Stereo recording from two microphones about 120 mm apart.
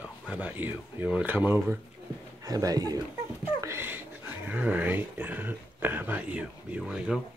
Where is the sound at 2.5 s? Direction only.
30° right (ahead or behind).